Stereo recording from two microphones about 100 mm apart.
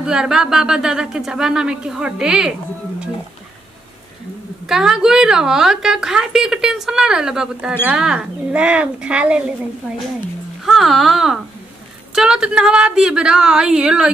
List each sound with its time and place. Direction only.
0.0 s a woman's voice: 5° right (ahead or behind)
4.6 s a woman's voice: 5° right (ahead or behind)
10.6 s a woman's voice: centre (ahead or behind)